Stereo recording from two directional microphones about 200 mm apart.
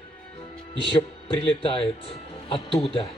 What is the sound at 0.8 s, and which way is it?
Speech, 25° left (ahead or behind).